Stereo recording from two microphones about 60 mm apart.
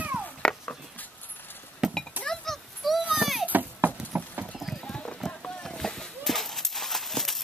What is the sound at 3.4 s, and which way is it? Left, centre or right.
Clip-clop, right.